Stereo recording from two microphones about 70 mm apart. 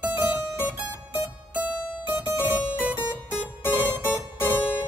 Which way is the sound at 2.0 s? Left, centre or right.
Right.